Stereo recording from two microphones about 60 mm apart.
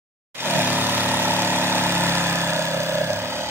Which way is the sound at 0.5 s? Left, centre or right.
Right.